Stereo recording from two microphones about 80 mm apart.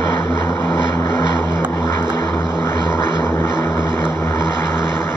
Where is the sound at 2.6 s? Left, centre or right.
Left.